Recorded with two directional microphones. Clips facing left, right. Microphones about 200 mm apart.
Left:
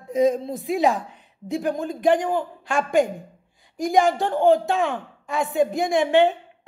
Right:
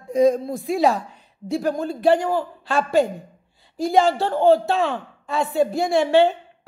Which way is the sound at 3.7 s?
15° left (ahead or behind).